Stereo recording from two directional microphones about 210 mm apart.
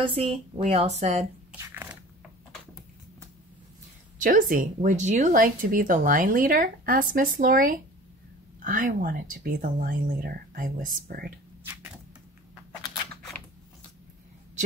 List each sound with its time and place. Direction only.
0.0 s speech: 30° right (ahead or behind)
1.6 s biting: 10° right (ahead or behind)
4.2 s speech: 40° right (ahead or behind)